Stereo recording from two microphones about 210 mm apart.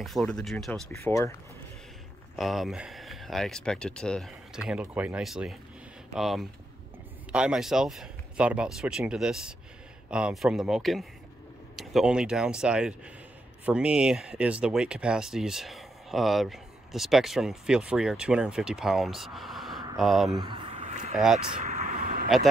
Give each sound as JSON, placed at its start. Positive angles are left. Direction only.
{"t": 0.0, "sound": "speech", "side_deg": 0}
{"t": 2.3, "sound": "speech", "side_deg": 0}
{"t": 20.2, "sound": "speech", "side_deg": -20}
{"t": 20.8, "sound": "a sound", "side_deg": -35}
{"t": 21.5, "sound": "vehicle", "side_deg": -30}